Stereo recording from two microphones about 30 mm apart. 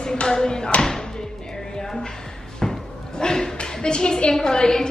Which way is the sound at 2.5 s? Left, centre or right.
Centre.